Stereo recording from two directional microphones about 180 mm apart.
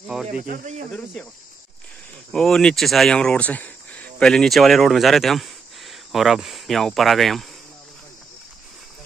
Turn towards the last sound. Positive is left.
turn(degrees=0)  # may be behind; listen again after turning